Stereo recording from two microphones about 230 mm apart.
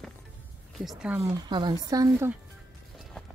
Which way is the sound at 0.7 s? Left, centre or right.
Centre.